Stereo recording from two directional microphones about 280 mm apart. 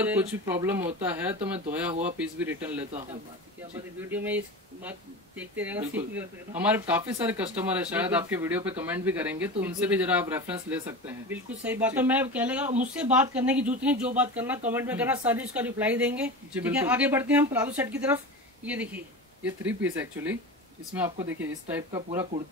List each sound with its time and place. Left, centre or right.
0.0 s speech: centre
2.9 s speech: right
4.0 s speech: centre
5.4 s speech: centre
12.6 s speech: right
12.9 s speech: centre